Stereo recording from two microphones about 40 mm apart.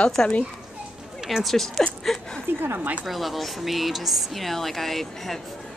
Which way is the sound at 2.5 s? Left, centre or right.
Right.